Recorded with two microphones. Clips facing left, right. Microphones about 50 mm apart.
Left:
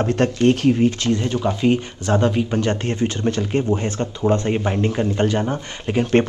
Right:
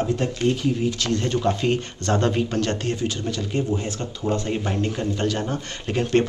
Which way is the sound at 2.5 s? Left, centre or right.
Left.